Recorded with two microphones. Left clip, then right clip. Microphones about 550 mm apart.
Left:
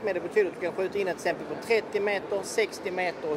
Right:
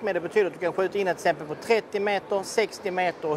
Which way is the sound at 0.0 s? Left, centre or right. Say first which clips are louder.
Right 2 dB; right.